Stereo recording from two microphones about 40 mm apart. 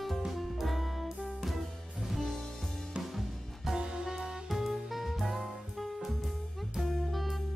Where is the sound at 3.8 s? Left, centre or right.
Centre.